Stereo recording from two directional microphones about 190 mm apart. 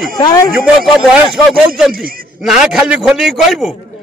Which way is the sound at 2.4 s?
5° right (ahead or behind).